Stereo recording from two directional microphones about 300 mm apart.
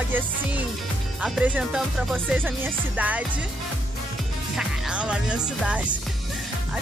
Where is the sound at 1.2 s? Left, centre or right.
Centre.